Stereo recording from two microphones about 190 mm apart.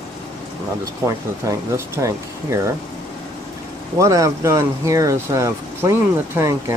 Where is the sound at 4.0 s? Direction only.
15° right (ahead or behind).